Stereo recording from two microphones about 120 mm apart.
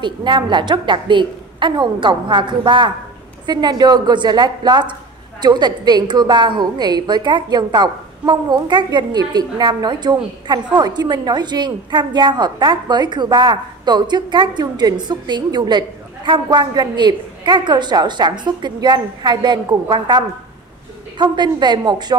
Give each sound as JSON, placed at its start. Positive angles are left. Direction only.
{"t": 0.0, "sound": "a woman's voice", "side_deg": -40}